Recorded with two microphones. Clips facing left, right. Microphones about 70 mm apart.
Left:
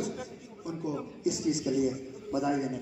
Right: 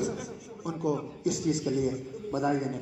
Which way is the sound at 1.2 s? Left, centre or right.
Right.